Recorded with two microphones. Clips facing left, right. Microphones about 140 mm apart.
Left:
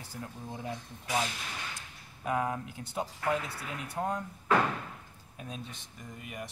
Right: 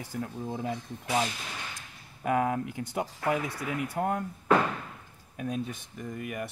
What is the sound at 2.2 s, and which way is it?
Speech, 60° right (ahead or behind).